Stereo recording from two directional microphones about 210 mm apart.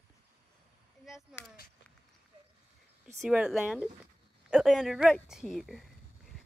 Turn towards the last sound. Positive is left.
turn(degrees=0)  # may be behind; listen again after turning